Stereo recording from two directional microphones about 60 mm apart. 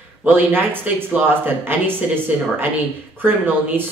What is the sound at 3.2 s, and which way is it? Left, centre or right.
Speech, right.